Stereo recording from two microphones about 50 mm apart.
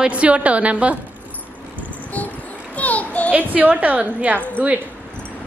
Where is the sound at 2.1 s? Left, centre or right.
Left.